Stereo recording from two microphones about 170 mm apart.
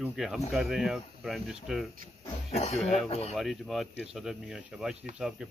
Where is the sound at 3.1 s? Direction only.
40° left (ahead or behind).